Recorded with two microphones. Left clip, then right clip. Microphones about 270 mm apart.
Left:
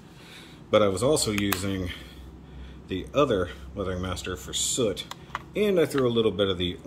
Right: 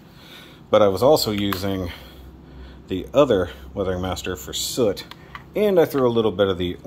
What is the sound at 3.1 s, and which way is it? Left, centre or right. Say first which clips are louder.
Speech: right 7 dB; right.